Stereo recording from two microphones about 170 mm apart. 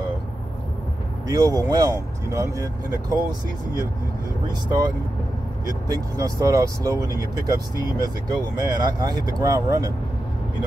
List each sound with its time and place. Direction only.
1.2 s speech: 20° right (ahead or behind)
4.6 s speech: 25° right (ahead or behind)